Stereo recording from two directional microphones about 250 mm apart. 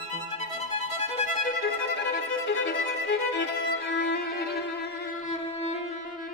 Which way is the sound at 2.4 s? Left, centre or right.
Left.